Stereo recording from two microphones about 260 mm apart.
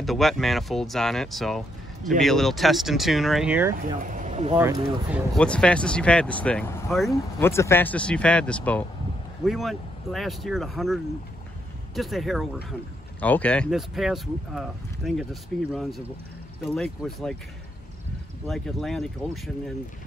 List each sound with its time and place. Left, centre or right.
0.0 s speech: centre
3.7 s speech: right
4.6 s speech: centre
5.3 s speech: centre
18.5 s speech: centre